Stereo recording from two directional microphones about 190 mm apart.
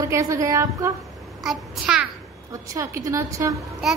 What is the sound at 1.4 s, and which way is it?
Speech, centre (ahead or behind).